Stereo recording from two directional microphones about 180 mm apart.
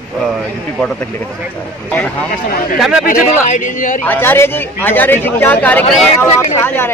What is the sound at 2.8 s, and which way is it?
Speech, centre (ahead or behind).